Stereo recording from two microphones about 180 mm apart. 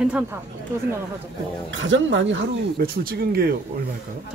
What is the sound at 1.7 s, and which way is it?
Speech, 90° right.